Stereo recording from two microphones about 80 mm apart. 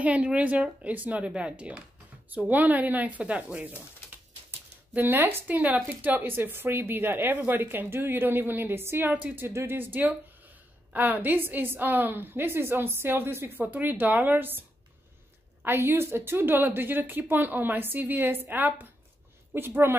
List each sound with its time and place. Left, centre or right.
0.0 s a woman's voice: centre
15.6 s a woman's voice: right